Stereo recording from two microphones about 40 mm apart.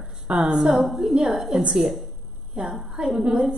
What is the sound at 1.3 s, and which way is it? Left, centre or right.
Speech, centre.